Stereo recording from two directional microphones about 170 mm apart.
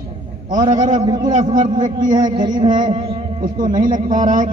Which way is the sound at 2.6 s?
50° right (ahead or behind).